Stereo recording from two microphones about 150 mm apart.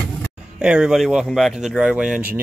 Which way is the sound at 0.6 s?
5° right (ahead or behind).